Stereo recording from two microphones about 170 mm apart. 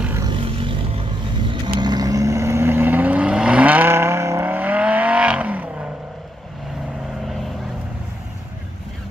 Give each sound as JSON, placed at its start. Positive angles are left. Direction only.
{"t": 0.2, "sound": "vehicle", "side_deg": -30}